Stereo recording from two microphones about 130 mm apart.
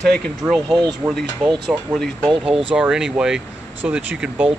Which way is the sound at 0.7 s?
35° right (ahead or behind).